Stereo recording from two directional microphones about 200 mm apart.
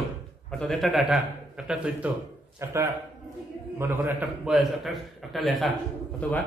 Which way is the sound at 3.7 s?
10° right (ahead or behind).